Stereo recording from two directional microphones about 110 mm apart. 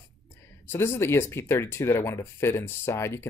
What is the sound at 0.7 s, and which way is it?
Speech, 25° left (ahead or behind).